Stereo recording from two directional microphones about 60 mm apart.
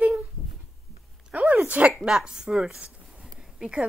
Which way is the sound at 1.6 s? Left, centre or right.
Right.